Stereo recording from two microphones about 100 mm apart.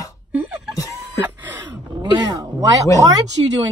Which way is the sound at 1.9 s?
50° right (ahead or behind).